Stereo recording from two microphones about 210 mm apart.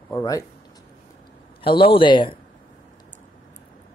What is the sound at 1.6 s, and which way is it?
Speech, 25° left (ahead or behind).